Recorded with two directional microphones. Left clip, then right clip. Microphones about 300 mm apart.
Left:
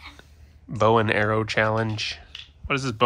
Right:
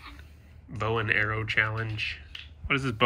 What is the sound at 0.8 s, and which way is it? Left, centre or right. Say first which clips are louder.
Speech: left 7 dB; centre.